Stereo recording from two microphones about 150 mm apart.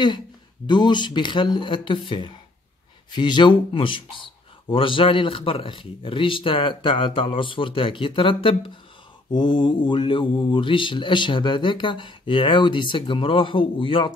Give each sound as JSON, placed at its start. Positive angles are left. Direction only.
{"t": 0.7, "sound": "speech", "side_deg": 30}